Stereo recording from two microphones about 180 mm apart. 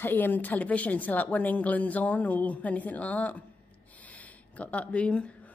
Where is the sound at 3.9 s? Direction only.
10° left (ahead or behind).